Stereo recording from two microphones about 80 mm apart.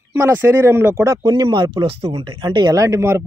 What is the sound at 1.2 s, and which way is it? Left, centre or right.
Speech, right.